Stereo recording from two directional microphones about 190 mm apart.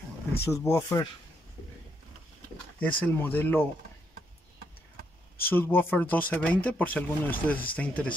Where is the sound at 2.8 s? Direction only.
10° left (ahead or behind).